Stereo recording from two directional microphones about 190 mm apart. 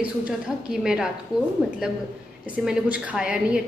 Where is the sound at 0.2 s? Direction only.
5° right (ahead or behind).